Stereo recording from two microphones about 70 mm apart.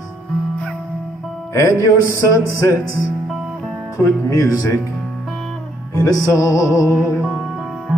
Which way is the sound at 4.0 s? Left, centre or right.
Left.